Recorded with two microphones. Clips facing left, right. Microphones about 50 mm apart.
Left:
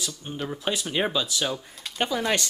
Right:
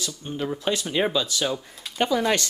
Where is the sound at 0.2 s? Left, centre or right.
Centre.